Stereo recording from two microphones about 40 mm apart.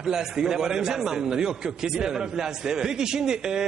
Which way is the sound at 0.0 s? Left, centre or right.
Centre.